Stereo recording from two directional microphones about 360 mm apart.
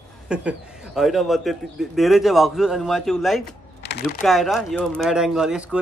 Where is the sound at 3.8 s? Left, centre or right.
Left.